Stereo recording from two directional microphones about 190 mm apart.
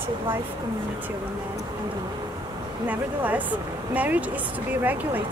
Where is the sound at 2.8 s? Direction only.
10° right (ahead or behind).